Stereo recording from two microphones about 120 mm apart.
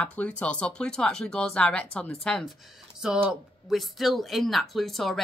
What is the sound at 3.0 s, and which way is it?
Speech, 5° right (ahead or behind).